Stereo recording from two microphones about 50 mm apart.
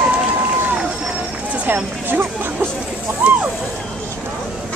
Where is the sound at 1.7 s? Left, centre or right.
Right.